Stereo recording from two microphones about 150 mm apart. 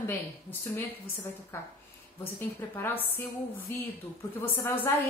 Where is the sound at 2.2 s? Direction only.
15° left (ahead or behind).